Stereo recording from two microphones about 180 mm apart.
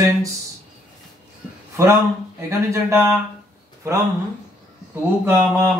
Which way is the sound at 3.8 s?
15° right (ahead or behind).